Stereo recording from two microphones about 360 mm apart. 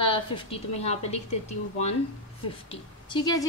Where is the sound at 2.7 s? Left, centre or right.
Centre.